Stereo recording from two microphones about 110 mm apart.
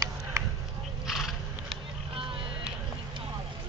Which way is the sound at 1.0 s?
Centre (ahead or behind).